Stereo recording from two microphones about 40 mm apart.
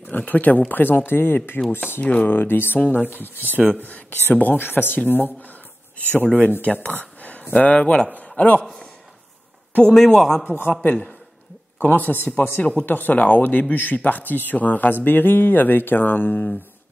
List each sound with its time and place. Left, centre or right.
0.2 s speech: left
2.0 s speech: left
2.2 s a man's voice: left
3.6 s a man's voice: left
4.6 s a man's voice: left
6.3 s a man's voice: left
6.9 s a sound: left
7.5 s speech: left
8.1 s a man's voice: left
9.9 s a man's voice: centre
10.7 s a man's voice: left
12.5 s speech: left
12.8 s a man's voice: left
15.0 s speech: left